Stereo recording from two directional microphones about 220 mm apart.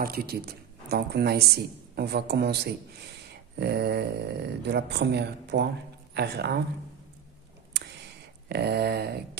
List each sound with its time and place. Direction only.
0.0 s a woman's voice: 45° right (ahead or behind)
7.7 s a sound: 50° right (ahead or behind)
8.5 s a woman's voice: 45° right (ahead or behind)